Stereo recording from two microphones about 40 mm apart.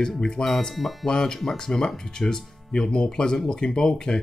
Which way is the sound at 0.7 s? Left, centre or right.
Centre.